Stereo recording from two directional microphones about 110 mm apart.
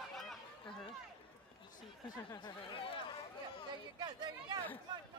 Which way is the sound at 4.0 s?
40° right (ahead or behind).